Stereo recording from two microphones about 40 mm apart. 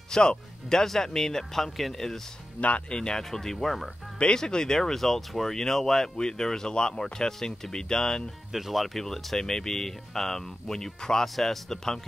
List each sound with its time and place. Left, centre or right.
0.1 s speech: centre
2.9 s speech: centre
3.3 s speech: centre
4.2 s speech: left
8.5 s speech: centre